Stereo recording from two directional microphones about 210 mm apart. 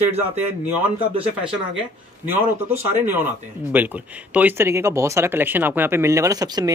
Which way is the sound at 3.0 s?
10° right (ahead or behind).